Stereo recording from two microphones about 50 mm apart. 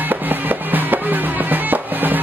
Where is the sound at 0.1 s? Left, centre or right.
Right.